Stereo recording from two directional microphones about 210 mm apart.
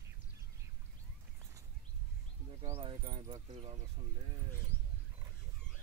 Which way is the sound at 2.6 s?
25° right (ahead or behind).